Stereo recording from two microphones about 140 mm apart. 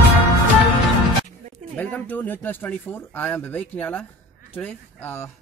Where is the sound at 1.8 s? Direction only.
10° left (ahead or behind).